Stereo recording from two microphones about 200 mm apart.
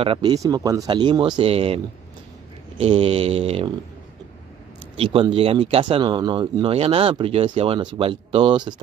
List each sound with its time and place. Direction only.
0.0 s speech: 25° right (ahead or behind)
2.8 s speech: 30° right (ahead or behind)
4.9 s speech: 25° right (ahead or behind)